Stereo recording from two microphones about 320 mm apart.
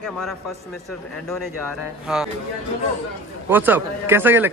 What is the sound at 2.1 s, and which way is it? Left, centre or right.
Speech, centre.